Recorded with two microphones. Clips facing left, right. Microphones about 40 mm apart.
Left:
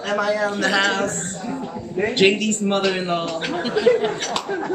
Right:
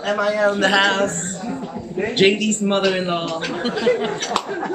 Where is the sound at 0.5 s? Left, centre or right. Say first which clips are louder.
Right 3 dB; right.